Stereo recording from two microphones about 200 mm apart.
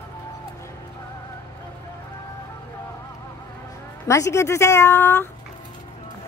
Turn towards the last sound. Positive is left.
turn(degrees=10)  # may be behind; listen again after turning